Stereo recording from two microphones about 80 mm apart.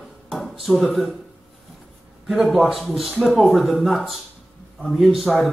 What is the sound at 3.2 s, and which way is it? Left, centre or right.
A man's voice, centre.